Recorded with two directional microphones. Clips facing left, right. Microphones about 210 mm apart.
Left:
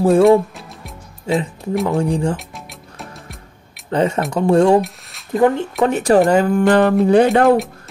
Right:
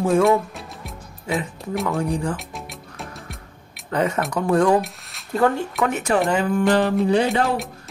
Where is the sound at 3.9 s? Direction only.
30° left (ahead or behind).